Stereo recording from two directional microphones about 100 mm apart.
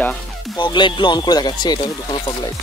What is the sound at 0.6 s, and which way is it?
Speech, 50° left (ahead or behind).